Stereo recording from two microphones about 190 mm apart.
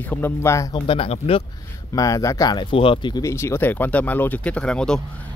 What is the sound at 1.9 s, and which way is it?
Speech, 20° left (ahead or behind).